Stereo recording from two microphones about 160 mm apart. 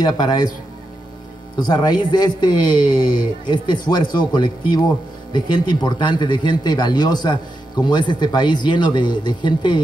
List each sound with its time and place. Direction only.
0.0 s speech: 25° left (ahead or behind)
1.6 s speech: 25° left (ahead or behind)